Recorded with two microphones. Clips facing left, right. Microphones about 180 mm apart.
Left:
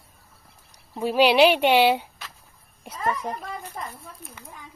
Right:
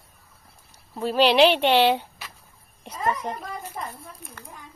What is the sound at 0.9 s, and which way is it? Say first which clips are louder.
Speech: even; 10° left (ahead or behind).